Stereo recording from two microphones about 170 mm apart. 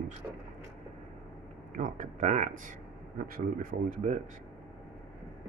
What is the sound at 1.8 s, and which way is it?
Speech, 45° right (ahead or behind).